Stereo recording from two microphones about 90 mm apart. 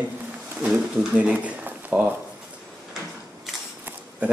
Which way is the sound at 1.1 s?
15° right (ahead or behind).